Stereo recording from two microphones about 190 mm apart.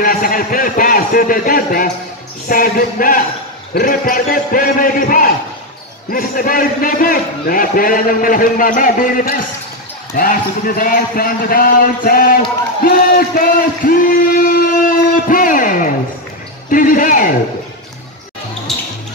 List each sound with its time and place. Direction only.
0.0 s a man's voice: 45° left (ahead or behind)
12.8 s a sound: 50° left (ahead or behind)
16.7 s a man's voice: 45° left (ahead or behind)
18.7 s music: centre (ahead or behind)